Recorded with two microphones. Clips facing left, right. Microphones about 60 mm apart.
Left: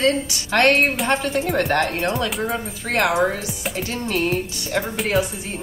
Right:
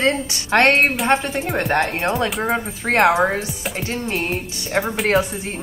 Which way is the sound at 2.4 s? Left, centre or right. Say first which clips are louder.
Right 4 dB; right.